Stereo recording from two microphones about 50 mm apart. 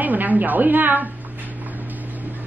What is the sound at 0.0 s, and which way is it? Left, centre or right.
A woman's voice, right.